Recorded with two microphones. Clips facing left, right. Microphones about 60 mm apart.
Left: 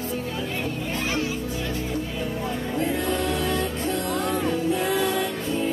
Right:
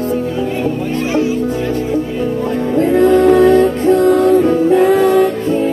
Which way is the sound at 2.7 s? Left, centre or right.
Right.